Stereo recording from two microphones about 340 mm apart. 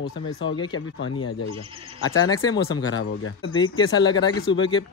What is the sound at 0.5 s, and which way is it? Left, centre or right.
Speech, centre.